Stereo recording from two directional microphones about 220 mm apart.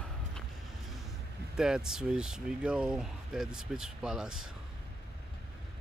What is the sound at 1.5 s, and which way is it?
Speech, 5° right (ahead or behind).